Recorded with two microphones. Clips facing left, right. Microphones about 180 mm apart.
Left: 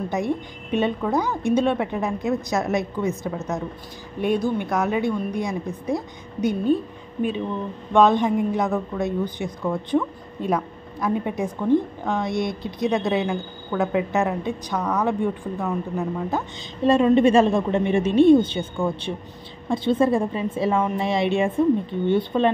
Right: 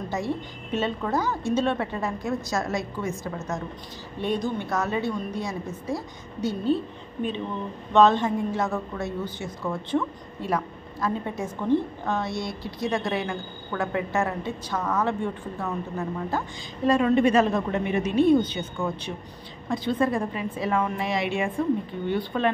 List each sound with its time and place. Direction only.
0.1 s a woman's voice: 15° left (ahead or behind)
7.9 s a woman's voice: 15° left (ahead or behind)